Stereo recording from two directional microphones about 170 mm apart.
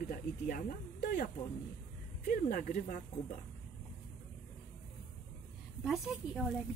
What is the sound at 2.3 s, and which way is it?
Speech, 50° left (ahead or behind).